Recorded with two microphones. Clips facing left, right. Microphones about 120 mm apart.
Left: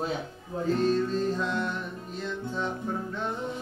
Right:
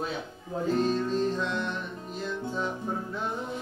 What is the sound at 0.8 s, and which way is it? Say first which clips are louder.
Music: left 3 dB; centre (ahead or behind).